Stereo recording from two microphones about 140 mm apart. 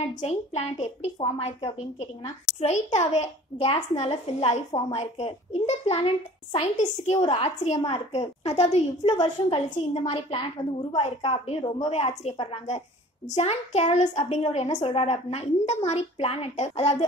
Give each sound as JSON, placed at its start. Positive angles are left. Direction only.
{"t": 0.1, "sound": "a woman's voice", "side_deg": 55}
{"t": 9.1, "sound": "a woman's voice", "side_deg": 35}